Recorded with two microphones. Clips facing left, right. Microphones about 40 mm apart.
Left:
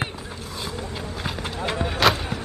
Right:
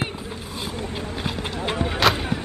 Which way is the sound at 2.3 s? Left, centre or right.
Right.